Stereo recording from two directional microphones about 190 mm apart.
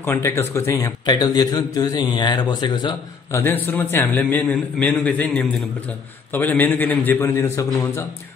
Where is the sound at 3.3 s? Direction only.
10° left (ahead or behind).